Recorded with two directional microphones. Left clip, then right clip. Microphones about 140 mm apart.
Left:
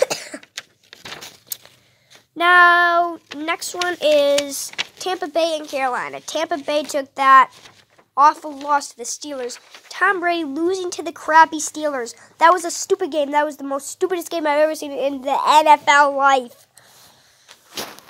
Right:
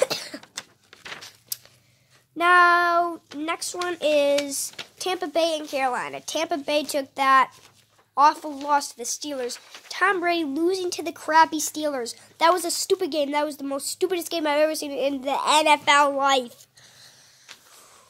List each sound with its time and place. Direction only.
0.0 s cough: 30° left (ahead or behind)
2.3 s a woman's voice: 10° left (ahead or behind)
4.9 s a woman's voice: 5° left (ahead or behind)